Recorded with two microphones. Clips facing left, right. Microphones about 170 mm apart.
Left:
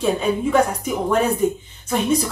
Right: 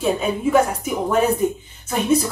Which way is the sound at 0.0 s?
5° right (ahead or behind).